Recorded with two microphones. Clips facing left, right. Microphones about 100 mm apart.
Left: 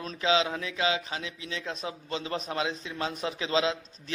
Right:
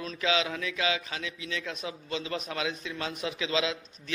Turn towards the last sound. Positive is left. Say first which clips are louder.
# left 3 dB
turn(degrees=35)  # may be behind; listen again after turning